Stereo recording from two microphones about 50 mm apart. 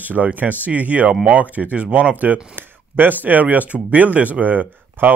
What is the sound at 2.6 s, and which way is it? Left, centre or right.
Speech, right.